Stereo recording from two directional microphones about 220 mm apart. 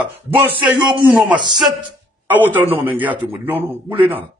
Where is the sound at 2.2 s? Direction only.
10° right (ahead or behind).